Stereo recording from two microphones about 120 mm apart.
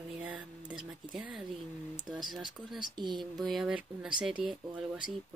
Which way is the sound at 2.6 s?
45° right (ahead or behind).